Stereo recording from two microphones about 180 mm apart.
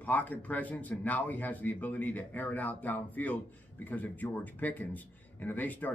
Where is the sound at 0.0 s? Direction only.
10° left (ahead or behind).